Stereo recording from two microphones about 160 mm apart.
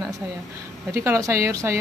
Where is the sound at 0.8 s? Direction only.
20° right (ahead or behind).